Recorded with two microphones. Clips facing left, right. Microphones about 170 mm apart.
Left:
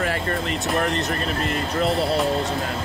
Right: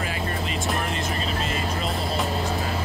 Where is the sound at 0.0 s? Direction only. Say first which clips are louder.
Left 4 dB; 65° left (ahead or behind).